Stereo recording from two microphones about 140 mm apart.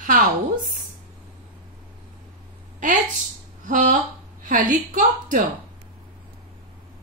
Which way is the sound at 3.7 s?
65° right (ahead or behind).